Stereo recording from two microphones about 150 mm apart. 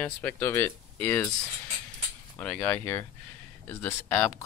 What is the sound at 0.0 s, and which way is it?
Speech, 10° left (ahead or behind).